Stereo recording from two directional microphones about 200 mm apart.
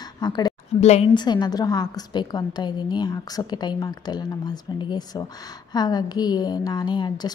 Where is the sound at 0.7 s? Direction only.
30° left (ahead or behind).